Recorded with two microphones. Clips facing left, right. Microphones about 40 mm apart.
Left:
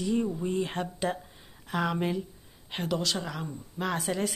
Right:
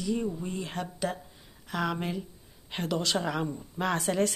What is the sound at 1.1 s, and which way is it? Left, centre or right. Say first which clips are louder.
Speech: left 6 dB; left.